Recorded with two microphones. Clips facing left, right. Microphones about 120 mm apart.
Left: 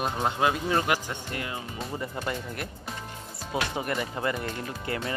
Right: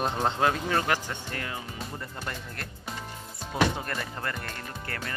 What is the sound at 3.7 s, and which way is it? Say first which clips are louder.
Speech: left 4 dB; 10° left (ahead or behind).